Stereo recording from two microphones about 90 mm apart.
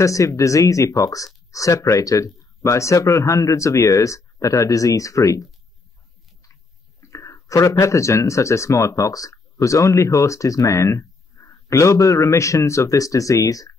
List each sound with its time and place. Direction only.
0.0 s speech: 35° left (ahead or behind)
7.0 s whispering: 35° left (ahead or behind)
7.8 s speech: 35° left (ahead or behind)